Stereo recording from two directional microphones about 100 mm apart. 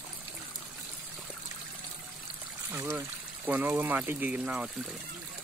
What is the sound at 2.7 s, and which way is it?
Speech, 25° right (ahead or behind).